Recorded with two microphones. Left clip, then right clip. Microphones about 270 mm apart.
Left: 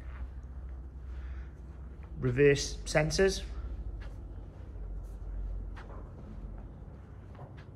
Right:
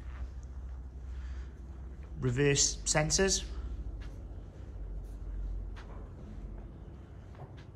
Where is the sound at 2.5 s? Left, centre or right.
Right.